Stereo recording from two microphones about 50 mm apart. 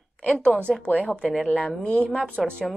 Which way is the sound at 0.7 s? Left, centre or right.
Left.